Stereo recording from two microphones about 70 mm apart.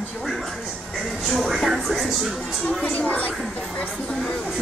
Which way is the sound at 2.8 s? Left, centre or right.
Centre.